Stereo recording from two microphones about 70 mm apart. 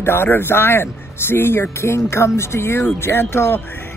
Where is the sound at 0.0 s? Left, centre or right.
Left.